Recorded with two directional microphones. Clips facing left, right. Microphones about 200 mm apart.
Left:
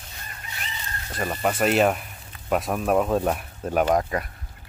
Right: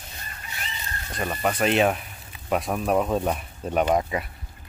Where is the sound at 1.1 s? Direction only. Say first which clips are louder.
Left 1 dB; 5° left (ahead or behind).